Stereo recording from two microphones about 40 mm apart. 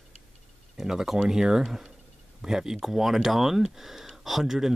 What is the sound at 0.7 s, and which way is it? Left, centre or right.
Speech, centre.